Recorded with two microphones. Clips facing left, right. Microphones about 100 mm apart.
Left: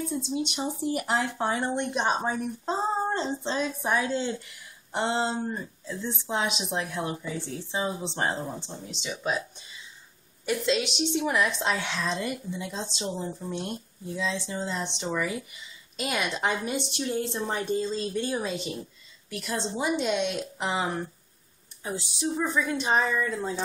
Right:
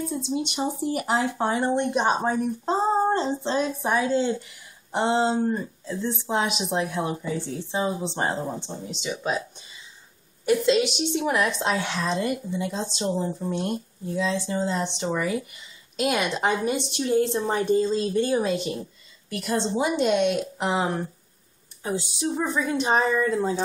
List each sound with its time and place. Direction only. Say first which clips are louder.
0.0 s speech: right 2 dB; centre (ahead or behind)
22.3 s a woman's voice: right 2 dB; 30° right (ahead or behind)
22.6 s speech: right 3 dB; 5° right (ahead or behind)